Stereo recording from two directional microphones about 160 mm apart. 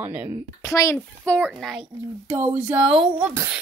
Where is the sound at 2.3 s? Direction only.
10° right (ahead or behind).